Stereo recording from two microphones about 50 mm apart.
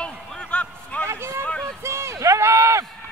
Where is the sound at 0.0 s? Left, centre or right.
Left.